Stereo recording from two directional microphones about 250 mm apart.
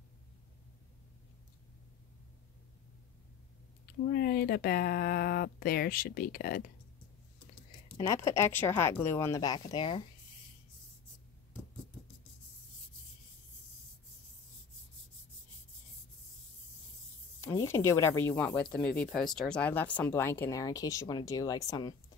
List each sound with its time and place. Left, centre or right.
3.8 s speech: left
8.0 s speech: centre
17.4 s speech: centre